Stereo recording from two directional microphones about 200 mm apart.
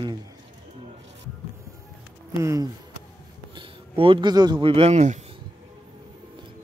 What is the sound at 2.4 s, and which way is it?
Speech, 15° right (ahead or behind).